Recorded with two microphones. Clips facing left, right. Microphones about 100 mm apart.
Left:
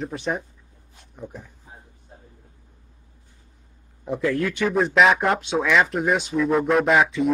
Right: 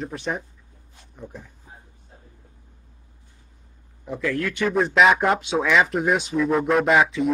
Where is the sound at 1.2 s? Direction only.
15° left (ahead or behind).